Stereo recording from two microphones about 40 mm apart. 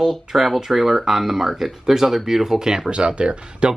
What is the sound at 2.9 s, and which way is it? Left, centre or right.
Speech, right.